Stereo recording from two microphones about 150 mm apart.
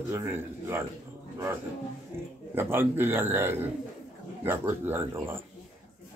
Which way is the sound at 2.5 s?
15° right (ahead or behind).